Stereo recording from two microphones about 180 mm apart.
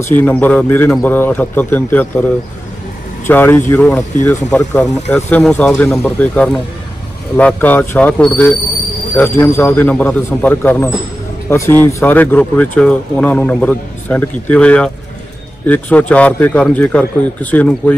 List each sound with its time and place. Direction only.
0.2 s speech: 10° left (ahead or behind)
3.3 s speech: 10° left (ahead or behind)
4.8 s speech: 40° left (ahead or behind)
5.1 s speech: 5° left (ahead or behind)